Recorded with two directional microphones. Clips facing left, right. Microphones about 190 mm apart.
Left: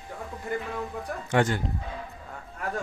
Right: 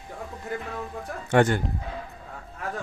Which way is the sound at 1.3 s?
55° right (ahead or behind).